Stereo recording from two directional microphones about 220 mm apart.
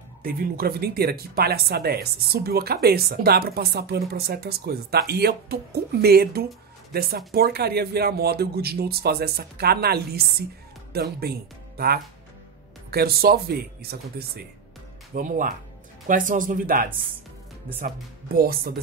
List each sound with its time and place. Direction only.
0.2 s speech: 40° right (ahead or behind)